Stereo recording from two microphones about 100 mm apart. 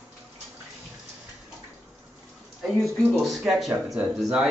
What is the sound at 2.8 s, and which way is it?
Speech, centre (ahead or behind).